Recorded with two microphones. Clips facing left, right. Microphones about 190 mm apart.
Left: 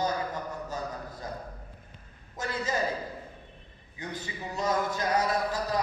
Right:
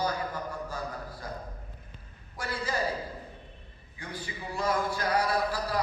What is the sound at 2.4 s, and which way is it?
Speech, 20° left (ahead or behind).